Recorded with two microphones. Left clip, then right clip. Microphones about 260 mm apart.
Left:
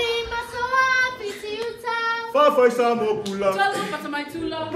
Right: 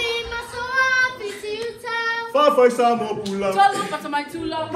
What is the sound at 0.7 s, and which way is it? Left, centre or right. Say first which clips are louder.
Child singing: right 1 dB; centre.